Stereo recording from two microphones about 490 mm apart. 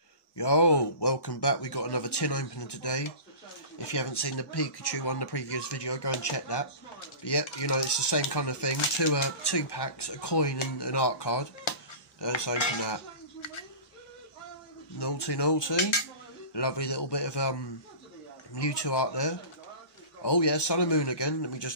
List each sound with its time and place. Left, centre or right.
0.4 s speech: left
15.0 s speech: left